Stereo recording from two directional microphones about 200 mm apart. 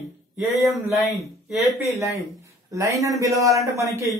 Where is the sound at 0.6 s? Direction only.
Centre (ahead or behind).